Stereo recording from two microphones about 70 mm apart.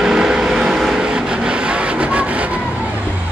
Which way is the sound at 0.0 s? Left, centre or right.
Centre.